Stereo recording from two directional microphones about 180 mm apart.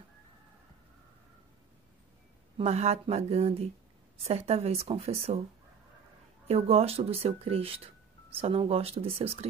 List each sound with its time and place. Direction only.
2.5 s speech: 35° right (ahead or behind)
6.4 s speech: 35° right (ahead or behind)